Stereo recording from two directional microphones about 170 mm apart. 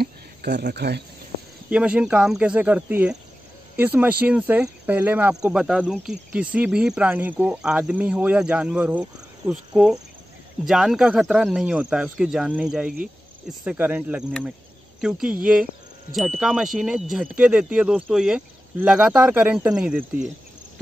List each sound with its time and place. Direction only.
0.0 s speech: 65° right (ahead or behind)
1.7 s speech: 5° right (ahead or behind)
10.6 s speech: centre (ahead or behind)